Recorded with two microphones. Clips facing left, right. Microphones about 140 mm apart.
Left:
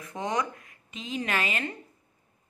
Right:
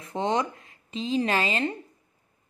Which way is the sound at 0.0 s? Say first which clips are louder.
Right 4 dB; 30° right (ahead or behind).